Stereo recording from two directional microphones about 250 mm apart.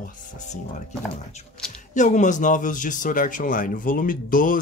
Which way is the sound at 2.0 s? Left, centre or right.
Left.